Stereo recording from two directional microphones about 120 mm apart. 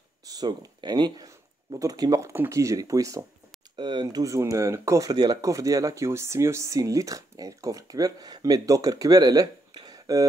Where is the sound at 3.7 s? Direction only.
40° right (ahead or behind).